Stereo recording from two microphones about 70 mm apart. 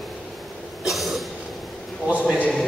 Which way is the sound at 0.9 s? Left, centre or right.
Centre.